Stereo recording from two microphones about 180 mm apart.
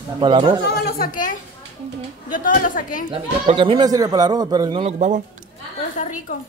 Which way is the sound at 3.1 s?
30° right (ahead or behind).